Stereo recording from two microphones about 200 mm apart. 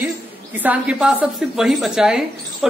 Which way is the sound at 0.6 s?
5° right (ahead or behind).